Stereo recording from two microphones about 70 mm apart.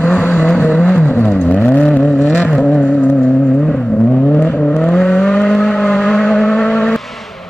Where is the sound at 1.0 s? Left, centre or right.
Left.